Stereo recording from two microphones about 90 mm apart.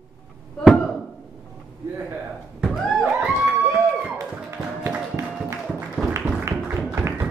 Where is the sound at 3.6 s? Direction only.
30° right (ahead or behind).